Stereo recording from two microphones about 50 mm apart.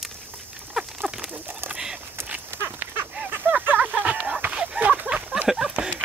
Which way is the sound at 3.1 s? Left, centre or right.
Right.